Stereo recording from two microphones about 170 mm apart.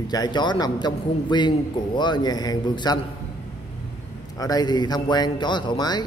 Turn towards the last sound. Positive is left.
turn(degrees=25)  # may be behind; listen again after turning